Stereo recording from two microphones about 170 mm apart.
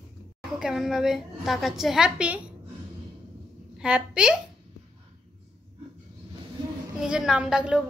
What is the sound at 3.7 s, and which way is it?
Speech, 5° right (ahead or behind).